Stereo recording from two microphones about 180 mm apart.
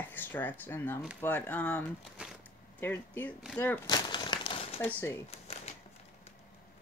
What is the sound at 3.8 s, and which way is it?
Crumpling, 25° left (ahead or behind).